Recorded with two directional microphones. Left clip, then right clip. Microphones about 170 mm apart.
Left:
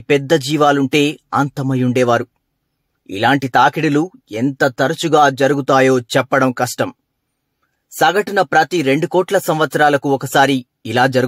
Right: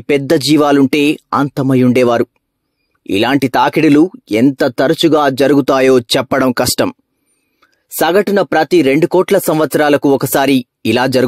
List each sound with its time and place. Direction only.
0.0 s speech: 40° right (ahead or behind)